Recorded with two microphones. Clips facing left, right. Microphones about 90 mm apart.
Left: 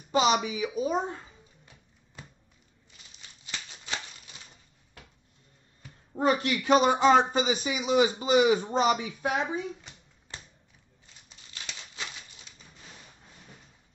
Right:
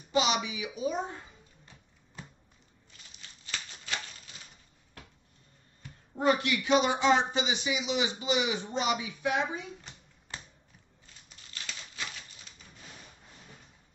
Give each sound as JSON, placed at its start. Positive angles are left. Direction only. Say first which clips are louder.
{"t": 0.1, "sound": "speech", "louder": "left 4 dB", "side_deg": 40}
{"t": 3.2, "sound": "a sound", "louder": "even", "side_deg": 20}
{"t": 6.1, "sound": "speech", "louder": "left 1 dB", "side_deg": 40}
{"t": 11.2, "sound": "scissors", "louder": "even", "side_deg": 20}